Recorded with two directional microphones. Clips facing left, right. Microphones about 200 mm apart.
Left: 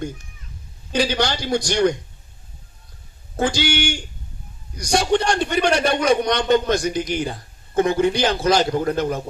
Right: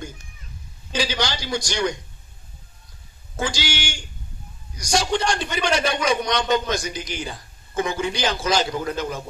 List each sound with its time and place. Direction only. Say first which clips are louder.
0.9 s a man's voice: left 4 dB; 55° left (ahead or behind)
3.3 s a man's voice: left 6 dB; 55° left (ahead or behind)